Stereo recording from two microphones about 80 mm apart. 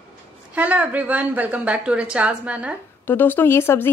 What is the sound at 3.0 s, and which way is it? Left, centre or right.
Speech, left.